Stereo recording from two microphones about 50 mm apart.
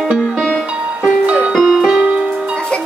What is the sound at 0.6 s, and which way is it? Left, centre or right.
Music, right.